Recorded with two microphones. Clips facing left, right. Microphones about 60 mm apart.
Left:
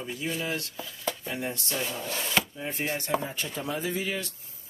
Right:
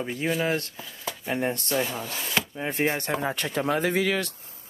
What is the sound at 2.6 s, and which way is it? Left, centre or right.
Speech, right.